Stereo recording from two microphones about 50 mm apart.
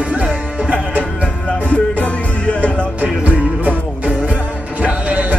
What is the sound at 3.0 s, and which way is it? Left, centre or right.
Music, right.